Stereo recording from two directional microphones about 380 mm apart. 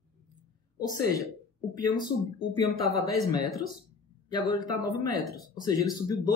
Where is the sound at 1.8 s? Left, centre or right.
Centre.